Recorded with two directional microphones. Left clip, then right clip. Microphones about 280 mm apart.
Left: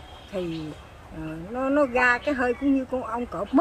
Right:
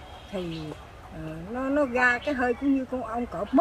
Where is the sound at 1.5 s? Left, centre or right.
Centre.